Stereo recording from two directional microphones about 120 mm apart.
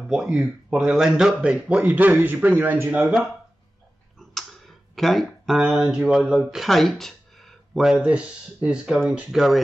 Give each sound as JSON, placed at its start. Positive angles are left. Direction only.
{"t": 0.1, "sound": "speech", "side_deg": -5}